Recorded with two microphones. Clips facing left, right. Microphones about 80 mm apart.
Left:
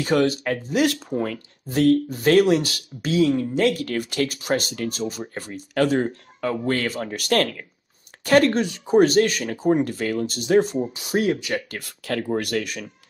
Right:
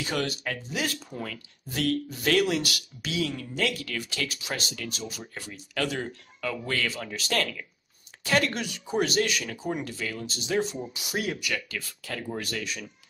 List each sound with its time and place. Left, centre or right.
0.0 s speech: left
11.7 s speech: left